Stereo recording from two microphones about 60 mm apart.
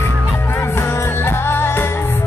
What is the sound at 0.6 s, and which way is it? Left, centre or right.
Music, left.